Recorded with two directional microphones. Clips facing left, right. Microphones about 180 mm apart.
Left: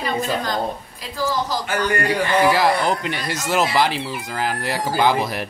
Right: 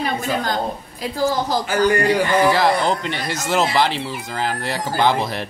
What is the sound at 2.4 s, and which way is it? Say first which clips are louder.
Speech: right 1 dB; 10° left (ahead or behind).